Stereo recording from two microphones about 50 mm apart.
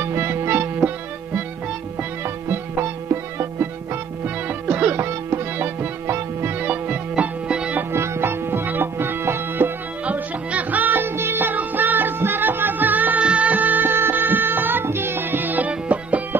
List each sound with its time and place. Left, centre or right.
0.0 s music: right
0.7 s music: right
2.2 s music: right
4.5 s music: right
4.9 s music: right
6.6 s music: right
7.4 s music: centre
7.9 s music: right
10.0 s music: right
13.2 s music: right